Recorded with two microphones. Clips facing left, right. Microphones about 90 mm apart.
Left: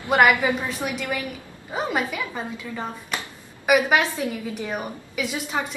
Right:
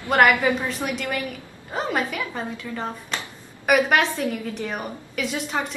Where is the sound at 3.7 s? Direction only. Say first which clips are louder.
Even; 5° left (ahead or behind).